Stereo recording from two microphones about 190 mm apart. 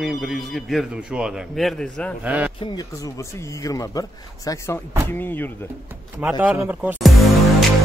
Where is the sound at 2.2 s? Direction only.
10° right (ahead or behind).